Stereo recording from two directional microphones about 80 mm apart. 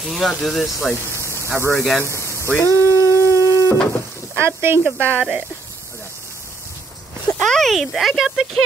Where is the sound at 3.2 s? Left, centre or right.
Left.